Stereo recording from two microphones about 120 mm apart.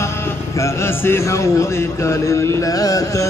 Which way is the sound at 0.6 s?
20° left (ahead or behind).